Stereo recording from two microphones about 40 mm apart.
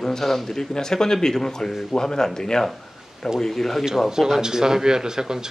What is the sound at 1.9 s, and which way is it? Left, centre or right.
Speech, centre.